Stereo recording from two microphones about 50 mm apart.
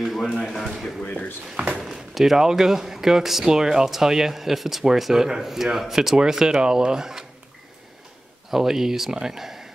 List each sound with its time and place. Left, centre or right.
0.0 s a sound: centre
1.0 s speech: left
1.6 s speech: centre
8.5 s speech: centre